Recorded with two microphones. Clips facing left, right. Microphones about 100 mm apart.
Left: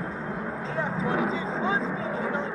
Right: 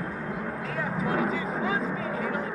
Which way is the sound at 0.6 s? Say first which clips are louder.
Left 2 dB; 25° left (ahead or behind).